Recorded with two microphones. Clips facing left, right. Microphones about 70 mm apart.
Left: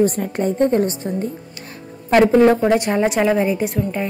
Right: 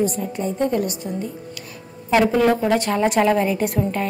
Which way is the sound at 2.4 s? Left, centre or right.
Left.